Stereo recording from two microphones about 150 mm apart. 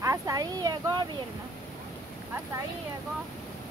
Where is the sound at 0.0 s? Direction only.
20° right (ahead or behind).